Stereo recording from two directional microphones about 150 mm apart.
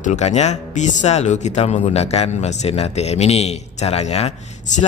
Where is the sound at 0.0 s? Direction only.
50° left (ahead or behind).